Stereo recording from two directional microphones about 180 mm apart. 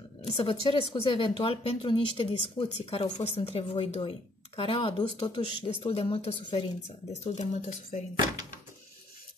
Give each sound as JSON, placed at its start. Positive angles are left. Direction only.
{"t": 0.4, "sound": "speech", "side_deg": 30}